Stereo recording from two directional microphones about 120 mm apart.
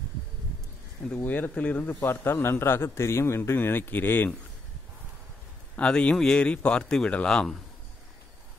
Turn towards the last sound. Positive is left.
turn(degrees=5)  # may be behind; listen again after turning